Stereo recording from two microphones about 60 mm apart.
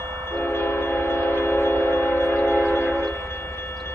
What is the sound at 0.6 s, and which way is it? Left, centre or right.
Train, left.